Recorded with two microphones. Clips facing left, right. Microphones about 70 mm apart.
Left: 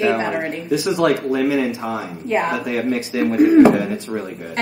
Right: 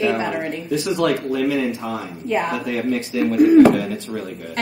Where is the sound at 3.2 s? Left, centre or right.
Left.